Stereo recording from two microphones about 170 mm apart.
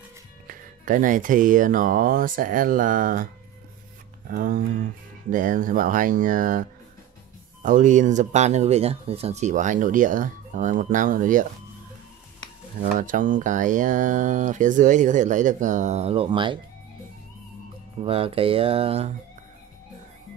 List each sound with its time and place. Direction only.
0.5 s speech: 50° right (ahead or behind)
4.4 s speech: 55° right (ahead or behind)
7.6 s speech: 50° right (ahead or behind)
12.8 s speech: 50° right (ahead or behind); by 16.5 s 30° right (ahead or behind)
18.0 s speech: 35° right (ahead or behind)